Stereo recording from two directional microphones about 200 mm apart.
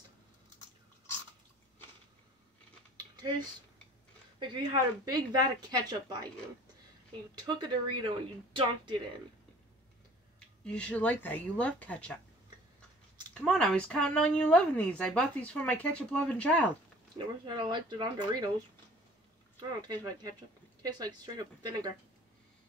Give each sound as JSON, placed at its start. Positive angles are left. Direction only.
{"t": 3.2, "sound": "a sound", "side_deg": -20}
{"t": 4.4, "sound": "speech", "side_deg": -20}
{"t": 7.5, "sound": "speech", "side_deg": -25}
{"t": 10.6, "sound": "speech", "side_deg": 5}
{"t": 13.3, "sound": "speech", "side_deg": 5}
{"t": 17.5, "sound": "speech", "side_deg": -25}
{"t": 19.8, "sound": "speech", "side_deg": -20}